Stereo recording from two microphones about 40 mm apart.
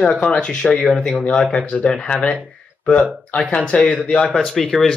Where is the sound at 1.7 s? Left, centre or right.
Left.